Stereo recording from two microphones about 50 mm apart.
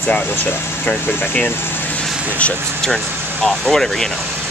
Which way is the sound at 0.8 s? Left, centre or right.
Left.